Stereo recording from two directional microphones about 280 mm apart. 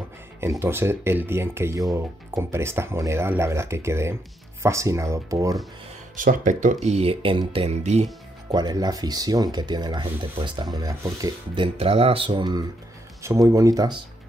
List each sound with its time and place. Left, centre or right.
0.4 s speech: centre
6.1 s speech: right; by 13.9 s centre